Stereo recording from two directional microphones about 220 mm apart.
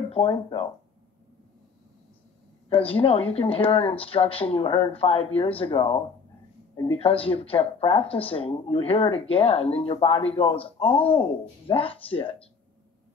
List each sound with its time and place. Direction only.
0.1 s speech: 25° left (ahead or behind)
2.7 s speech: 25° left (ahead or behind)